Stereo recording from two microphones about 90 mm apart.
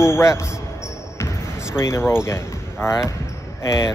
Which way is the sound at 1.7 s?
30° left (ahead or behind).